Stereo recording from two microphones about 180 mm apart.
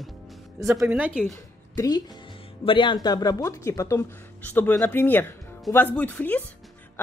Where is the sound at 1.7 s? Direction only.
20° left (ahead or behind).